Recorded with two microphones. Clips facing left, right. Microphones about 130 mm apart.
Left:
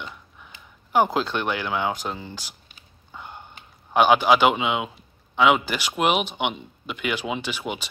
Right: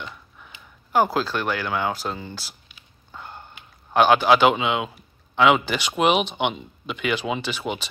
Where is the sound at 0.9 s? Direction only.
20° left (ahead or behind).